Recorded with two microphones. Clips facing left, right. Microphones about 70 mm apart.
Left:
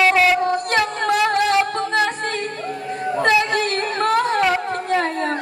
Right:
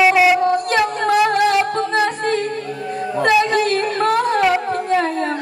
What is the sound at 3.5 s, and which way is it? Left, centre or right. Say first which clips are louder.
Singing: right 4 dB; left.